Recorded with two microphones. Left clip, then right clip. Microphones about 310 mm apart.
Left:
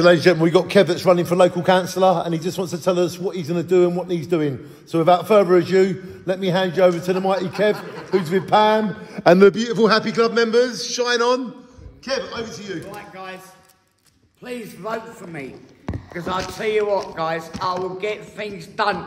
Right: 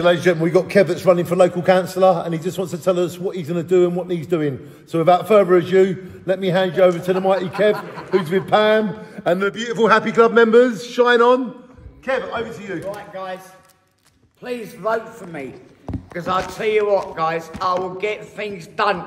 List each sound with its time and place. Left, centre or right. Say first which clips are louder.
0.0 s a man's voice: left 2 dB; left; by 8.8 s centre
9.1 s a man's voice: left 7 dB; centre
12.1 s a man's voice: right 3 dB; centre
14.4 s a man's voice: right 6 dB; centre